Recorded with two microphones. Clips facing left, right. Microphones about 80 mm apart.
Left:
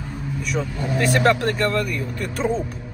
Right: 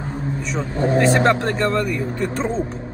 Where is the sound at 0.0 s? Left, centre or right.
Right.